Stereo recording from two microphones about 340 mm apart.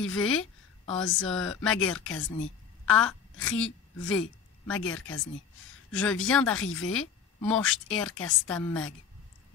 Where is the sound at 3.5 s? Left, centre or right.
Left.